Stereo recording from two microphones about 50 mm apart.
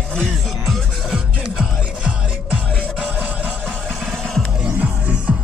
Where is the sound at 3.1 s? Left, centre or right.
Right.